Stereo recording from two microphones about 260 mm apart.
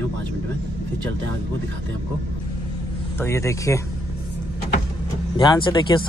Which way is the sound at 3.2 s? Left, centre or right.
Centre.